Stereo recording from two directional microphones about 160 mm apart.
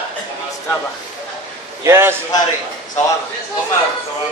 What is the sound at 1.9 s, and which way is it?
Speech, 15° right (ahead or behind).